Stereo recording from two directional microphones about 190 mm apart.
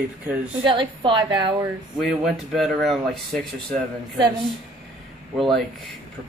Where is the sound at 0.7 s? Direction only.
25° right (ahead or behind).